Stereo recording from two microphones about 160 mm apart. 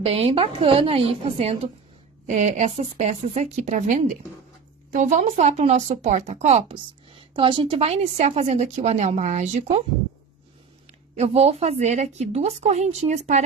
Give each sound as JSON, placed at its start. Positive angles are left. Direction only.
{"t": 0.0, "sound": "a woman's voice", "side_deg": -35}
{"t": 11.1, "sound": "speech", "side_deg": -40}